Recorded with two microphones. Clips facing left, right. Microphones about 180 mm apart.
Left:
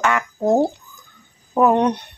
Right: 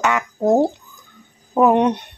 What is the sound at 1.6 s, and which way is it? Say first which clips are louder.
Speech: right 1 dB; 15° right (ahead or behind).